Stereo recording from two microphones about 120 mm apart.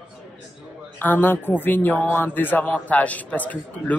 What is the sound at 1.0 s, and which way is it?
A man's voice, 15° left (ahead or behind).